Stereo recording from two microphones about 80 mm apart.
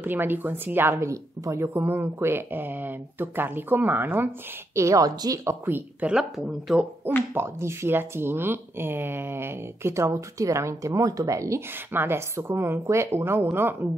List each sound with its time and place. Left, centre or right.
0.0 s speech: right
1.7 s speech: right
4.7 s a woman's voice: right
5.4 s speech: right
6.0 s speech: centre
7.3 s speech: right
11.7 s speech: right